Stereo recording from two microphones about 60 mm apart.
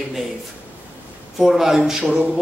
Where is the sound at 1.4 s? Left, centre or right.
Centre.